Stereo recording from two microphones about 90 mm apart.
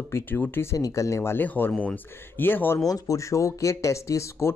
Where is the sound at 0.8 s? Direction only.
40° left (ahead or behind); by 2.8 s 25° left (ahead or behind).